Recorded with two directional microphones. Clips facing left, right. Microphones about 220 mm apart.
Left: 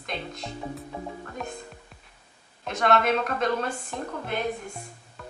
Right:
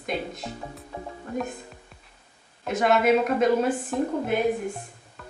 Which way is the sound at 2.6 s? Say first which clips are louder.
Right 3 dB; 5° right (ahead or behind).